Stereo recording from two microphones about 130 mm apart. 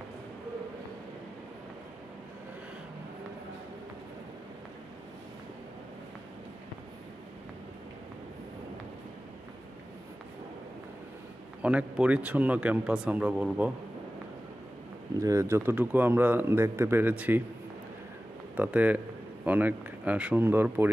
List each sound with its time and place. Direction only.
11.6 s speech: 10° right (ahead or behind)
15.1 s speech: 25° right (ahead or behind)
18.6 s speech: 10° right (ahead or behind)